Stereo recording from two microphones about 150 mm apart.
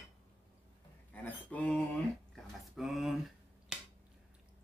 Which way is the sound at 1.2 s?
10° left (ahead or behind).